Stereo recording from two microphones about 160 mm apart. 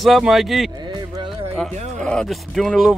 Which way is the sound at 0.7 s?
25° right (ahead or behind).